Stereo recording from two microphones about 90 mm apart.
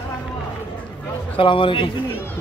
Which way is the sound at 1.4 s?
70° left (ahead or behind).